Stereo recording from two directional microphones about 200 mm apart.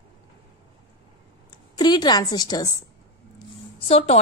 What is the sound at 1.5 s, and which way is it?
A woman's voice, 20° left (ahead or behind).